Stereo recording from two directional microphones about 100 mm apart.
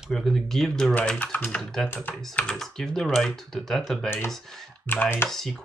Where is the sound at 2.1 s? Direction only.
15° left (ahead or behind).